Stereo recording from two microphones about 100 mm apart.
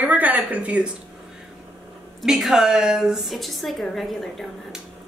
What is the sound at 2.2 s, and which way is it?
Speech, 5° right (ahead or behind).